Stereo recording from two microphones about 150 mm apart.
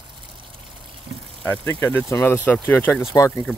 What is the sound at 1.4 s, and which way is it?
Speech, 15° left (ahead or behind).